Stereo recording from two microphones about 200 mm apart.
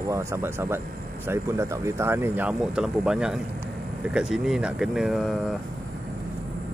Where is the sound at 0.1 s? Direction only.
10° right (ahead or behind).